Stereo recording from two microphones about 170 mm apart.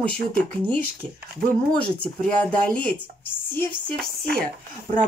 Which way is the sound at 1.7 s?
5° left (ahead or behind).